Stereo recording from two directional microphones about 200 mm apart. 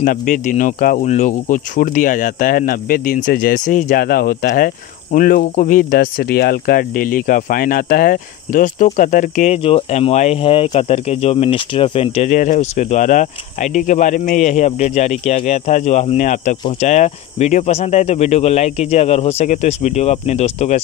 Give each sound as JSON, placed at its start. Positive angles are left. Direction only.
{"t": 0.0, "sound": "speech", "side_deg": 45}